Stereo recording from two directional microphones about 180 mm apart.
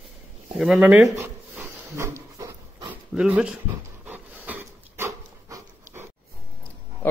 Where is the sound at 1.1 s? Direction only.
10° right (ahead or behind).